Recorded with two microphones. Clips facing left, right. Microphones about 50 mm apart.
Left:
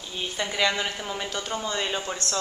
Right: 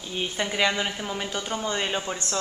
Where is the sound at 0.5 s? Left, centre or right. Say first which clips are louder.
Even; centre.